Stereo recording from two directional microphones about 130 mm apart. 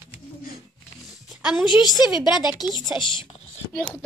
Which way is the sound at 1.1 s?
5° right (ahead or behind).